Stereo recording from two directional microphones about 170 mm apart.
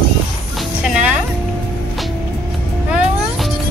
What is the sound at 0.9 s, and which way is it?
Music, 5° right (ahead or behind).